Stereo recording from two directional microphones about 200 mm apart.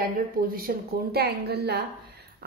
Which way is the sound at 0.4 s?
50° right (ahead or behind).